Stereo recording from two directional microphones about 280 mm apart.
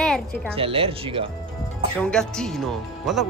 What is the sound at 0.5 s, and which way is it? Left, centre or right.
Speech, centre.